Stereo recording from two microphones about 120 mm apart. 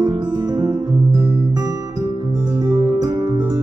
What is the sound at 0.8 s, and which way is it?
Music, 25° right (ahead or behind).